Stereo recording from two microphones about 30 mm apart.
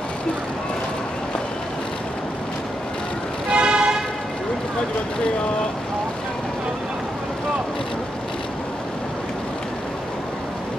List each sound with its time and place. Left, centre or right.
3.5 s vehicle: right